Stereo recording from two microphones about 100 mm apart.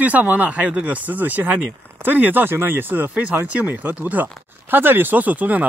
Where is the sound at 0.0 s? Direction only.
15° right (ahead or behind).